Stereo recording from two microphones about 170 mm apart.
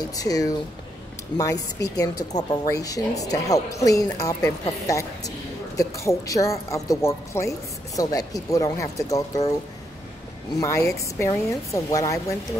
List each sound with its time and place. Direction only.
0.1 s speech: 20° left (ahead or behind)
2.0 s speech: 20° left (ahead or behind)
10.6 s speech: 20° left (ahead or behind)